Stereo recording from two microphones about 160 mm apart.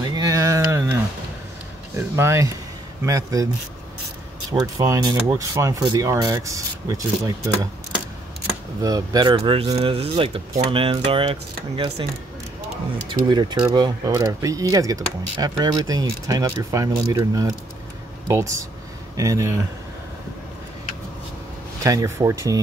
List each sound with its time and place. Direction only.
0.0 s a sound: 25° right (ahead or behind)
2.0 s speech: 15° right (ahead or behind)
4.5 s speech: 20° right (ahead or behind)
8.8 s speech: 25° right (ahead or behind)
13.3 s speech: 25° right (ahead or behind)
21.8 s speech: 20° right (ahead or behind)